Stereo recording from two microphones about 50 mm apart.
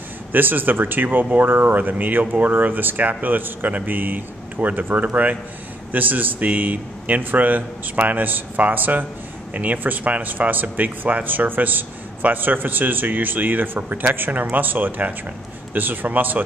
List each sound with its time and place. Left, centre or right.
0.3 s speech: right